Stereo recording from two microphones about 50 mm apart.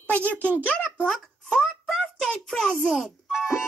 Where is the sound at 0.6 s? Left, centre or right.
Left.